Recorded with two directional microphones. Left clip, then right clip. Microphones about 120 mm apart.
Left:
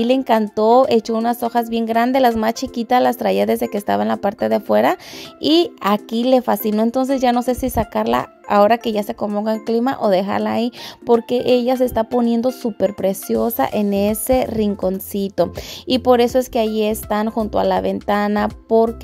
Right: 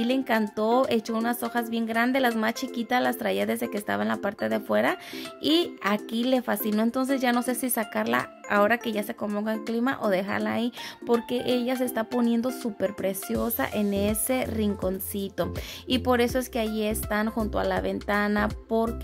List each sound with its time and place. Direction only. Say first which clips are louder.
0.0 s speech: left 10 dB; 60° left (ahead or behind)
0.4 s speech: left 11 dB; 45° left (ahead or behind)
9.2 s speech: left 9 dB; 35° left (ahead or behind)
9.5 s speech: left 9 dB; 55° left (ahead or behind)